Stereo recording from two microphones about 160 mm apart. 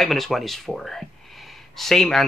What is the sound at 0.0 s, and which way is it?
Speech, centre (ahead or behind).